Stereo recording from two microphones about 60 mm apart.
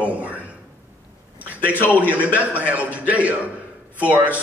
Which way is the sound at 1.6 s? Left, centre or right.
Left.